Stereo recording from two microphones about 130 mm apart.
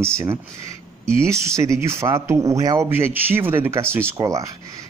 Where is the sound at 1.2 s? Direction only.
20° right (ahead or behind).